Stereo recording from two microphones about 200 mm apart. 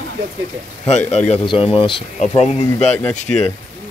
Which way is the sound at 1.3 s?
30° left (ahead or behind).